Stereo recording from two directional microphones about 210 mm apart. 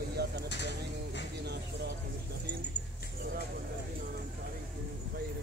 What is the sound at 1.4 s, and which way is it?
Speech, 50° right (ahead or behind).